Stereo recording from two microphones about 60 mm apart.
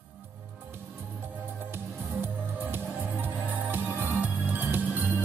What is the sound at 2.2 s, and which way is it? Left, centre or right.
Music, right.